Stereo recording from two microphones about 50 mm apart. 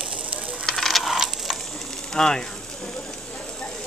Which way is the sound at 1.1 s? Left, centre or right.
Centre.